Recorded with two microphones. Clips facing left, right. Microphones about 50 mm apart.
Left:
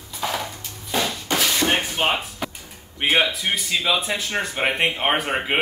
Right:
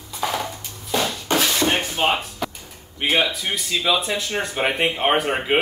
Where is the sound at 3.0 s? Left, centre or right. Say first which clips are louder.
Left 1 dB; centre.